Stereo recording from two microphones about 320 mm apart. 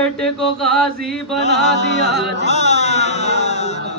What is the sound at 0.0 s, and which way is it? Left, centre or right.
Speech, centre.